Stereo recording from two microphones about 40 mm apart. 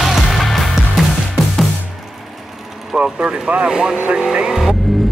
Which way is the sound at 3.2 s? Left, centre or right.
Right.